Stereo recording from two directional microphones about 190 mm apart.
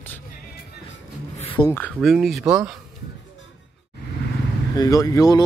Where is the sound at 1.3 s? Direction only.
25° left (ahead or behind).